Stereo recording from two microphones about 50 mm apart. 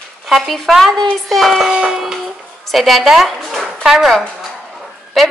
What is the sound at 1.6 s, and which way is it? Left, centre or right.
Speech, centre.